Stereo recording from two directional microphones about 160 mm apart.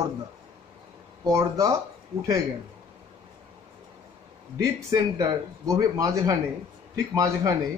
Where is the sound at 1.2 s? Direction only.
20° right (ahead or behind).